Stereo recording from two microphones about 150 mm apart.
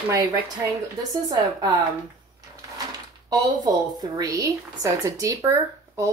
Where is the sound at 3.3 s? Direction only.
25° right (ahead or behind).